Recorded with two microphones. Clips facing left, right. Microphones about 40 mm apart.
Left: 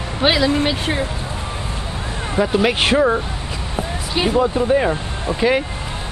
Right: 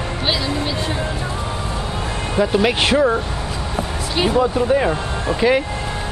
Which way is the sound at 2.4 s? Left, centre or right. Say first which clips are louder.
Even; centre.